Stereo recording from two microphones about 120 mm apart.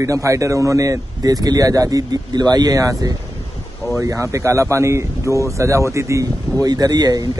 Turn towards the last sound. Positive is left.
turn(degrees=-35)  # may be behind; listen again after turning